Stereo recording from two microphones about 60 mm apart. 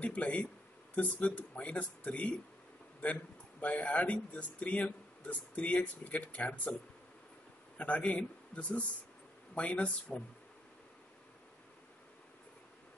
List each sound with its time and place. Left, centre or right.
0.0 s speech: left
3.6 s speech: left
7.7 s a man's voice: left